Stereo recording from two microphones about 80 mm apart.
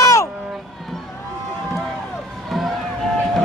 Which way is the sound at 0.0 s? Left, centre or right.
Left.